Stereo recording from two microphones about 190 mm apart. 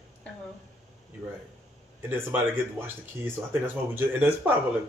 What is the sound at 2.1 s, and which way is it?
Speech, 10° right (ahead or behind).